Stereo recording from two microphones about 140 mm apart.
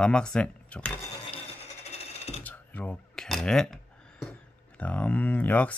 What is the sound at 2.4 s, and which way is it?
Speech, 10° left (ahead or behind).